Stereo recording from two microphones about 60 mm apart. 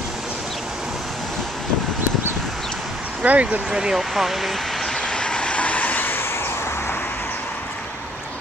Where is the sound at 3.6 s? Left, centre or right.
Centre; by 7.4 s left.